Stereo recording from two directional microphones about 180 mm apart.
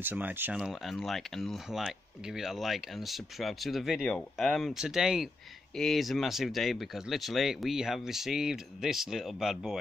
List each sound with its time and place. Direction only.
0.0 s speech: 10° right (ahead or behind)